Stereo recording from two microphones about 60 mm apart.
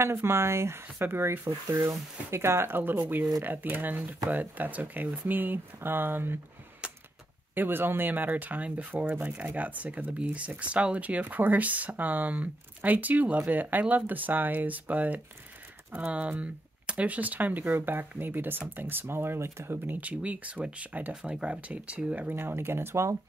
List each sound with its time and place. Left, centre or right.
0.0 s speech: right
6.8 s a sound: centre
7.5 s speech: right
19.8 s speech: right